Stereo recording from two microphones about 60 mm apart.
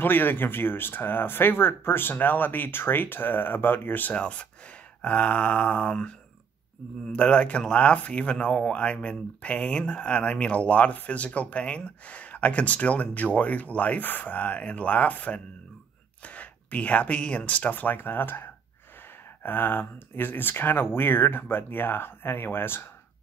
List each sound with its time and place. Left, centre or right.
0.0 s speech: left
4.1 s speech: left